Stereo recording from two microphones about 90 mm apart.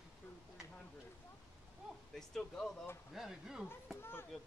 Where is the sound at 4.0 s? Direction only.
25° left (ahead or behind).